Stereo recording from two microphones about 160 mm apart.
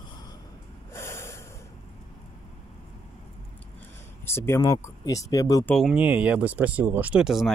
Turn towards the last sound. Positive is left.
turn(degrees=0)  # may be behind; listen again after turning